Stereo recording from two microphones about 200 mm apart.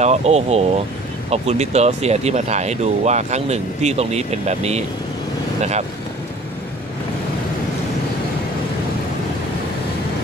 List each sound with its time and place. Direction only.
0.0 s speech: 35° right (ahead or behind)